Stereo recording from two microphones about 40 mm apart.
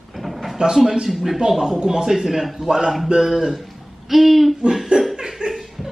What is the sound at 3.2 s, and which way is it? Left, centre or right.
Speech, centre.